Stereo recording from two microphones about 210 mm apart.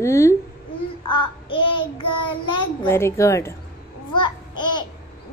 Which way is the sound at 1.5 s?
25° left (ahead or behind).